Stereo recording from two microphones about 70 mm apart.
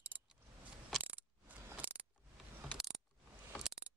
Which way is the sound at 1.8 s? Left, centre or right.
Right.